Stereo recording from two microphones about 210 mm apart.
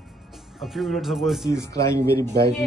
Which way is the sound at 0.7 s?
Centre (ahead or behind).